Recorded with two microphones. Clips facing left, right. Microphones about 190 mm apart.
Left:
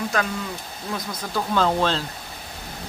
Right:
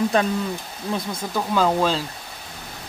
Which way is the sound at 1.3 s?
10° right (ahead or behind).